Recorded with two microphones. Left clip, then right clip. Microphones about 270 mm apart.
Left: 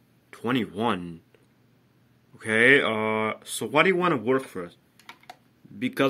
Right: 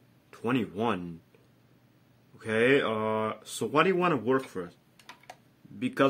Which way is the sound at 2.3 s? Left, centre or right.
Centre.